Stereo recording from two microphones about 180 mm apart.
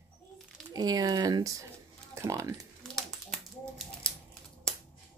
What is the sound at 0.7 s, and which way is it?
Speech, 20° right (ahead or behind).